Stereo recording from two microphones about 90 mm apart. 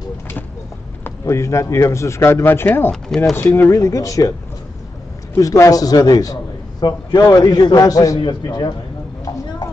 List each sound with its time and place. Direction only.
1.0 s a man's voice: 30° left (ahead or behind)
3.1 s speech: 5° left (ahead or behind)
3.5 s a man's voice: 30° left (ahead or behind)
5.3 s a man's voice: 35° left (ahead or behind)
8.2 s a man's voice: 55° left (ahead or behind)